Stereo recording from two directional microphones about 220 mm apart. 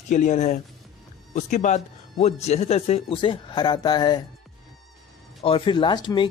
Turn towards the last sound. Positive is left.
turn(degrees=20)  # may be behind; listen again after turning